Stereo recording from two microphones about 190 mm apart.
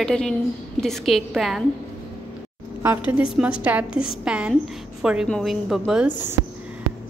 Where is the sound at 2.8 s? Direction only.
10° right (ahead or behind).